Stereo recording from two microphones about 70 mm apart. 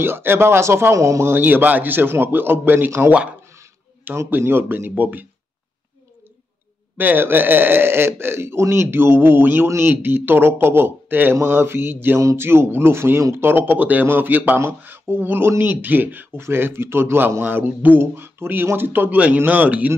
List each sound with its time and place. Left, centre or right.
0.0 s speech: right
1.3 s speech: right
4.3 s speech: right
7.0 s speech: right